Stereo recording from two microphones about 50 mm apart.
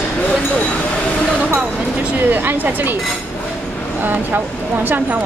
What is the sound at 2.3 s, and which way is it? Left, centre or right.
Speech, right.